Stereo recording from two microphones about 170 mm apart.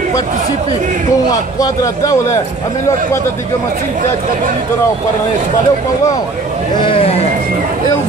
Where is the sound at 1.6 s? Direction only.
20° left (ahead or behind).